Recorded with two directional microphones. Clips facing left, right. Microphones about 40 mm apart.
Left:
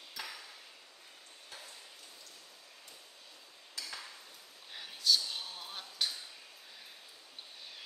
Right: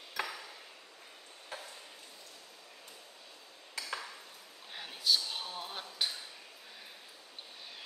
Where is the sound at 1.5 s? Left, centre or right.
Right.